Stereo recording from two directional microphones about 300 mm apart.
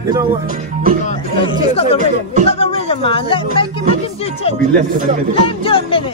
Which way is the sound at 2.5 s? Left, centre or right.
Centre.